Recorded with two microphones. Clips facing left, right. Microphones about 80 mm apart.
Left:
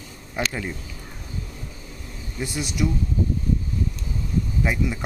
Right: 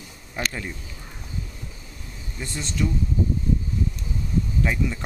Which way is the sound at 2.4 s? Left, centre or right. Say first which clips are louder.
Left 2 dB; centre.